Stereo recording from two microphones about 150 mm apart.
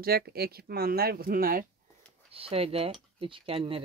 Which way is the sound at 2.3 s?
40° right (ahead or behind).